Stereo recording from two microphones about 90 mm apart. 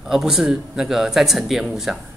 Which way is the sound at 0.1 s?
5° right (ahead or behind).